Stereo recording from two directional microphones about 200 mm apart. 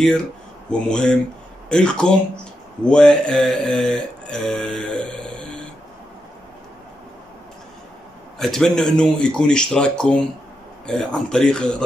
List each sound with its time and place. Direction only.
0.7 s mantra: 5° left (ahead or behind)
8.4 s mantra: centre (ahead or behind)